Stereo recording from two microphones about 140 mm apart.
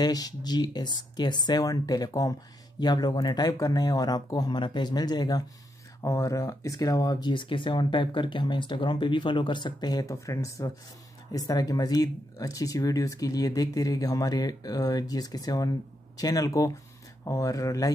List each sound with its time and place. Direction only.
0.0 s speech: 30° left (ahead or behind)